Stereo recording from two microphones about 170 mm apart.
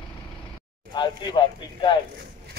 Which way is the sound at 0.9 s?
25° left (ahead or behind).